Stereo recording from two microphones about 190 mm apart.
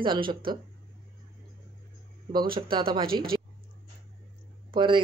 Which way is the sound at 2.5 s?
25° right (ahead or behind).